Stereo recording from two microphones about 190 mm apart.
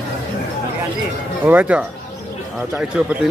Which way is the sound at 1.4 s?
10° right (ahead or behind).